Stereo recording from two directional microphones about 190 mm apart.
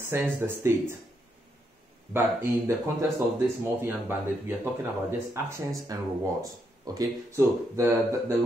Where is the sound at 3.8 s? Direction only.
10° right (ahead or behind).